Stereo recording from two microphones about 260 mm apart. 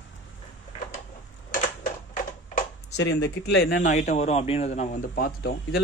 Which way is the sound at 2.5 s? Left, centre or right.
Left.